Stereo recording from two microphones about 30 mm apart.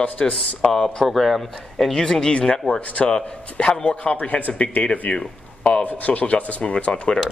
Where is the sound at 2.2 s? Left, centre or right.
Left.